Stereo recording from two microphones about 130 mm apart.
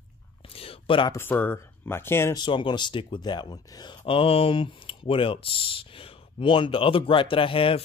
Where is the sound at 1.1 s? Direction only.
15° left (ahead or behind).